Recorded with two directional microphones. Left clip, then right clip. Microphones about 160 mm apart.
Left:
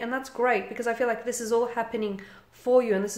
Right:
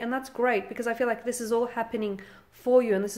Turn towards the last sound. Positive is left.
turn(degrees=-30)  # may be behind; listen again after turning